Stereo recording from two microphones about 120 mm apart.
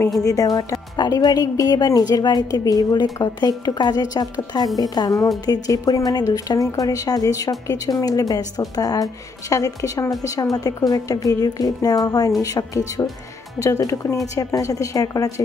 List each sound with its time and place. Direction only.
0.2 s a woman's voice: 30° left (ahead or behind)